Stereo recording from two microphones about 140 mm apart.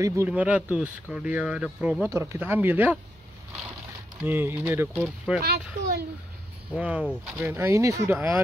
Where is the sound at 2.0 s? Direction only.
20° right (ahead or behind).